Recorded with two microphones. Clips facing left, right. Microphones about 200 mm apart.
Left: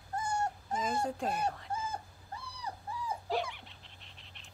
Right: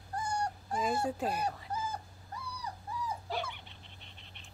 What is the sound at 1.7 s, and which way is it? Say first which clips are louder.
Dog: even; 25° left (ahead or behind).